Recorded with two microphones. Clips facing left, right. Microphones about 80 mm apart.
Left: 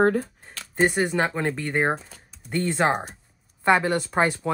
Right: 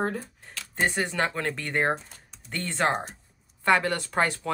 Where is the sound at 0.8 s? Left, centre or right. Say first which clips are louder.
Left 5 dB; centre.